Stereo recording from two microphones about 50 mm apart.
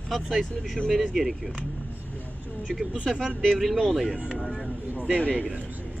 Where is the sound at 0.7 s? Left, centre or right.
Centre.